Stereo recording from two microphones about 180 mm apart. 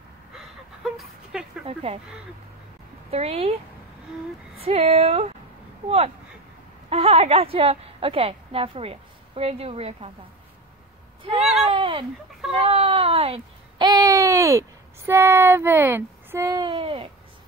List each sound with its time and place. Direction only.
0.4 s a sound: centre (ahead or behind)
1.7 s speech: 30° right (ahead or behind)
3.1 s speech: 35° right (ahead or behind)
4.6 s a woman's voice: 35° right (ahead or behind)
11.6 s speech: 30° right (ahead or behind)
12.5 s baby cry: 35° right (ahead or behind)
16.7 s speech: 30° right (ahead or behind)